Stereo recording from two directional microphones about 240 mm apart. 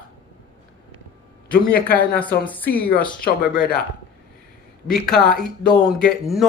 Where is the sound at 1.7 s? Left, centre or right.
Centre.